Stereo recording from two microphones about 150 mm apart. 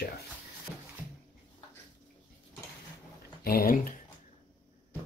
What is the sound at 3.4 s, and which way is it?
Speech, 85° left.